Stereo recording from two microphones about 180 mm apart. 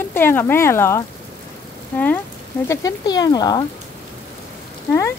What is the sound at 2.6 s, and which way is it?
Speech, 20° left (ahead or behind).